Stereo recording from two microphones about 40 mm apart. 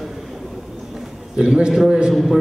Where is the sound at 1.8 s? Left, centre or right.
Right.